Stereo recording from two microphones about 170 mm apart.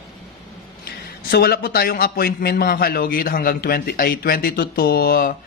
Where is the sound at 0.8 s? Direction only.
60° left (ahead or behind).